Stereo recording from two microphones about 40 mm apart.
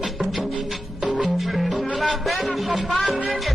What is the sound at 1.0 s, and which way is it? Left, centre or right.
Music, centre.